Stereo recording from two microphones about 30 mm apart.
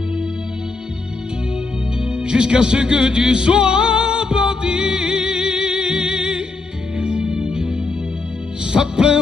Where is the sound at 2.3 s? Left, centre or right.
Right.